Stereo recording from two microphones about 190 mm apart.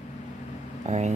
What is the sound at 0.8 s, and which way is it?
Speech, 35° right (ahead or behind).